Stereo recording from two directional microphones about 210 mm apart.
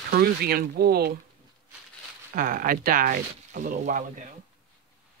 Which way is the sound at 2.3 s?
40° right (ahead or behind).